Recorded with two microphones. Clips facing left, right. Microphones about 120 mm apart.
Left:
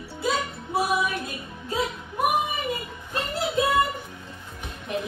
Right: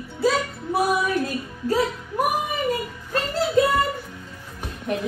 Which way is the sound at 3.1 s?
20° left (ahead or behind).